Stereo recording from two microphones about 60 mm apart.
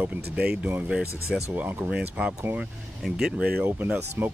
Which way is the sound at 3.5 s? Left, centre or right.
Right.